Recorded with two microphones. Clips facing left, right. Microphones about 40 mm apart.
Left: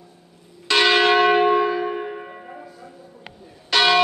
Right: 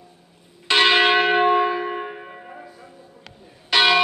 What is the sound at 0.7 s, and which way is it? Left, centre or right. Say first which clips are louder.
Church bell: even; right.